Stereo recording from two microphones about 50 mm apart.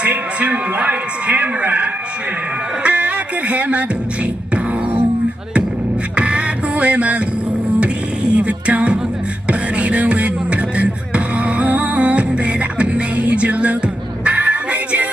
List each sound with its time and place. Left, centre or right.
0.0 s a man's voice: right
6.1 s music: right